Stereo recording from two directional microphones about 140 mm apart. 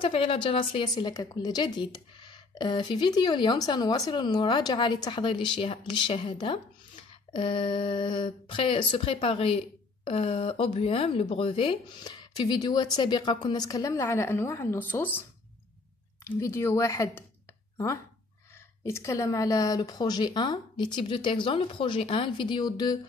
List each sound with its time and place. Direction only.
0.0 s speech: 40° left (ahead or behind); by 15.2 s 15° left (ahead or behind)
16.3 s speech: 20° left (ahead or behind)